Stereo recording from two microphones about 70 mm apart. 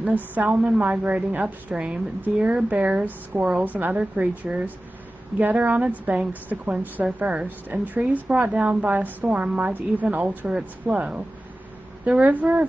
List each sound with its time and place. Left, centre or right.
0.0 s a woman's voice: right
12.0 s a woman's voice: right